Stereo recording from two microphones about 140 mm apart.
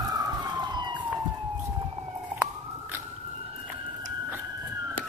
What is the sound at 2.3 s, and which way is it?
Emergency vehicle, 15° right (ahead or behind).